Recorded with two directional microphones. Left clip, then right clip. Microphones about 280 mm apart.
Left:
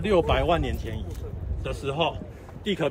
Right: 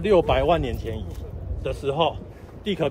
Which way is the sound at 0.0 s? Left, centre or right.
Centre.